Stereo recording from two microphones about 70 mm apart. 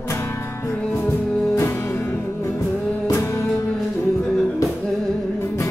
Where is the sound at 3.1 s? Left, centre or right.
Left.